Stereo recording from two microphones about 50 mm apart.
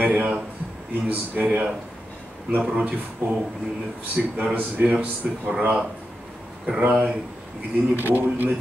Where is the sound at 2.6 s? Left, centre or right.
Right.